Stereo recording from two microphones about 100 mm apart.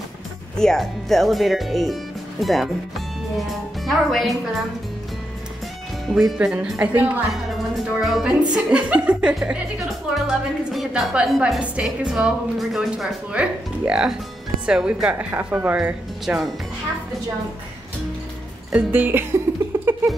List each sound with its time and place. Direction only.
0.6 s a woman's voice: 5° left (ahead or behind)
6.0 s a woman's voice: 5° right (ahead or behind)
6.8 s speech: 15° right (ahead or behind)
8.0 s a woman's voice: centre (ahead or behind)
11.6 s speech: 10° right (ahead or behind)
18.7 s speech: 15° right (ahead or behind)
19.7 s a sound: 25° right (ahead or behind)